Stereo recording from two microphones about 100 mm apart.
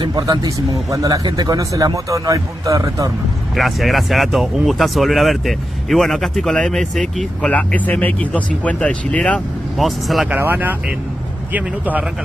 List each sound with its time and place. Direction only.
0.0 s a man's voice: 45° right (ahead or behind)
3.5 s speech: centre (ahead or behind)
9.8 s speech: centre (ahead or behind)
10.3 s speech: 20° right (ahead or behind)